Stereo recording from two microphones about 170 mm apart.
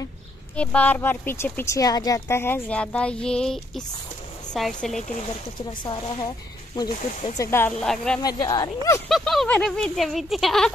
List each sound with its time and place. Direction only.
0.6 s speech: 10° left (ahead or behind)
5.7 s speech: 30° left (ahead or behind)
7.8 s speech: 5° left (ahead or behind)
8.2 s speech: 20° left (ahead or behind)
9.1 s speech: centre (ahead or behind)